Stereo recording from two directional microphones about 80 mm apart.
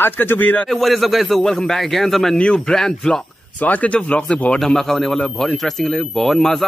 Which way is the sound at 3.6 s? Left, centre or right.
Centre.